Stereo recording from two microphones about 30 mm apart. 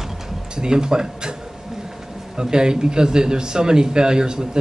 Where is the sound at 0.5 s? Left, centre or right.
Right.